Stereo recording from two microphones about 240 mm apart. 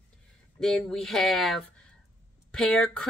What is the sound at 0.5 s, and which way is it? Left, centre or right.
Speech, centre.